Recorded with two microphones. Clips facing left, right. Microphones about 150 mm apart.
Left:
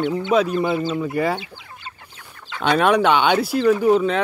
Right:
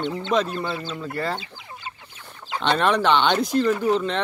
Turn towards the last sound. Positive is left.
turn(degrees=10)  # may be behind; listen again after turning